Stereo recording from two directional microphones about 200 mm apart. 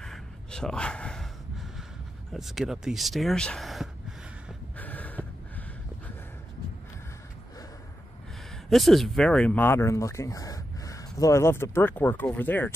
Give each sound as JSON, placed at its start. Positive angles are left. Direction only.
{"t": 0.0, "sound": "gasp", "side_deg": 5}
{"t": 2.3, "sound": "speech", "side_deg": 0}
{"t": 4.7, "sound": "gasp", "side_deg": 10}
{"t": 8.6, "sound": "speech", "side_deg": 0}